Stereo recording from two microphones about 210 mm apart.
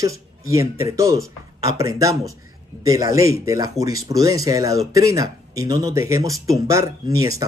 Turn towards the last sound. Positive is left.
turn(degrees=-15)  # may be behind; listen again after turning